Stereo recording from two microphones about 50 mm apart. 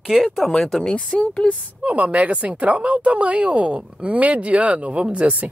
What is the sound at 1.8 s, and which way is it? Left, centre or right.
Speech, right.